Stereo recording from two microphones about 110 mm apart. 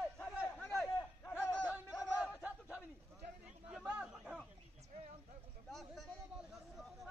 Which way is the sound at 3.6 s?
10° right (ahead or behind).